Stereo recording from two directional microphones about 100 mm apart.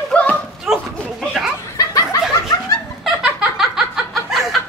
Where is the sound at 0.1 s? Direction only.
10° left (ahead or behind).